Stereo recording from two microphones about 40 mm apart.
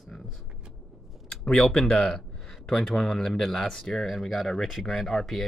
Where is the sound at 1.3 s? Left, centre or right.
Centre.